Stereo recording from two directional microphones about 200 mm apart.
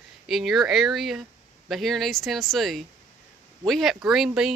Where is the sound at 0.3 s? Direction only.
Centre (ahead or behind).